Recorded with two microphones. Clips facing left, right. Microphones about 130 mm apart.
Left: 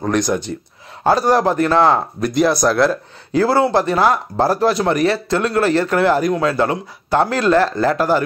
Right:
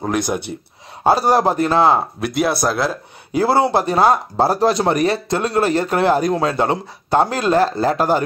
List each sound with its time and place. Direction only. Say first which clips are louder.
0.0 s a man's voice: left 2 dB; 10° right (ahead or behind)
3.3 s speech: left 1 dB; 15° right (ahead or behind)